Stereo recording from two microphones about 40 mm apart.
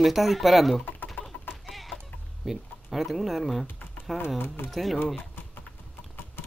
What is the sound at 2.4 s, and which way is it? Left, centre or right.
Speech, centre.